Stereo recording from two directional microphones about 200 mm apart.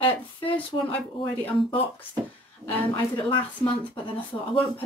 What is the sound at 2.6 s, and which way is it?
Speech, 10° left (ahead or behind).